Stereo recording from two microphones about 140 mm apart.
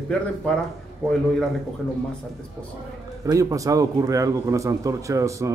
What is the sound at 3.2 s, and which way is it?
Speech, 25° right (ahead or behind).